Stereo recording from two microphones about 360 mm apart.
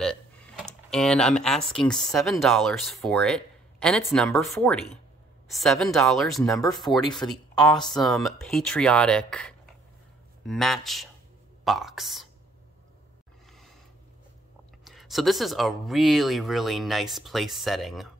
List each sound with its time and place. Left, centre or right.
0.6 s a woman's voice: centre
14.9 s speech: centre